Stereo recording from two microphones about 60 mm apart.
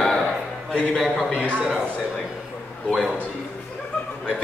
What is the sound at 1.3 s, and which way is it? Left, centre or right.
Speech, left.